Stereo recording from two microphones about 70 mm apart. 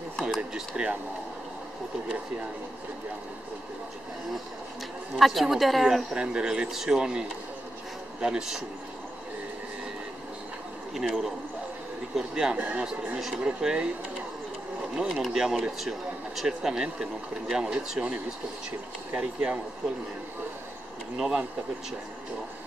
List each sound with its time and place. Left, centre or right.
0.4 s speech: centre
5.1 s a woman's voice: centre
6.1 s speech: centre
11.0 s a woman's voice: centre
15.0 s speech: centre
19.1 s speech: centre
21.2 s speech: centre